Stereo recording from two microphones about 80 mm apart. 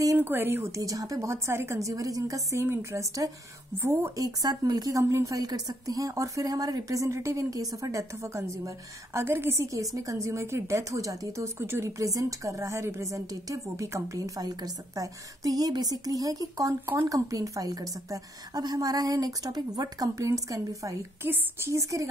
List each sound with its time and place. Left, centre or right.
0.2 s speech: right
0.7 s a woman's voice: right
2.6 s a woman's voice: right
4.2 s a woman's voice: right
16.8 s speech: right
17.1 s a woman's voice: right
21.2 s a woman's voice: right